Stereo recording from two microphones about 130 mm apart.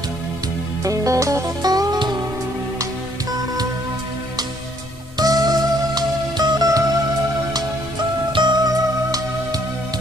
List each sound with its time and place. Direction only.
0.8 s music: 25° right (ahead or behind)
5.2 s music: 30° right (ahead or behind)
8.3 s music: 35° right (ahead or behind)